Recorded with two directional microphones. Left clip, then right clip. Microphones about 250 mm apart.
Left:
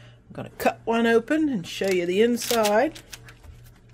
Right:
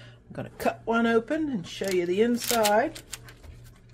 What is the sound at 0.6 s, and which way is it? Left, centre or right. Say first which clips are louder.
Speech: left 3 dB; left.